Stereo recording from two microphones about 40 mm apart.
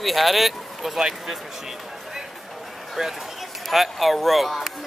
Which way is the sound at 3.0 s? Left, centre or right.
Centre.